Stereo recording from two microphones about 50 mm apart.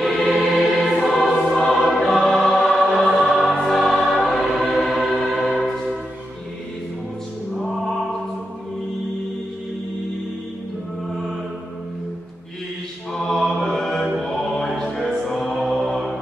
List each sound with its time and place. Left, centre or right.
0.0 s choir: centre
1.7 s music: centre
3.6 s choir: centre
7.6 s music: centre
13.1 s mantra: centre
14.2 s music: centre